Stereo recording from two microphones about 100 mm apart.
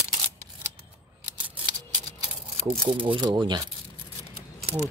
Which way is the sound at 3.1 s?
45° right (ahead or behind).